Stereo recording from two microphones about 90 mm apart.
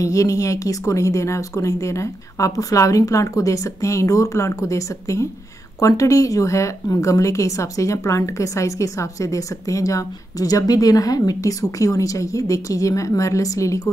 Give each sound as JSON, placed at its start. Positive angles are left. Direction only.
{"t": 0.0, "sound": "a woman's voice", "side_deg": 35}